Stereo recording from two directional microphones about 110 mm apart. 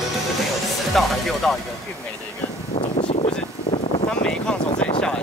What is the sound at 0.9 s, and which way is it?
Speech, centre (ahead or behind).